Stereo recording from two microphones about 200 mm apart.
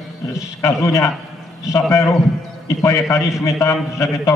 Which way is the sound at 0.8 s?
15° left (ahead or behind).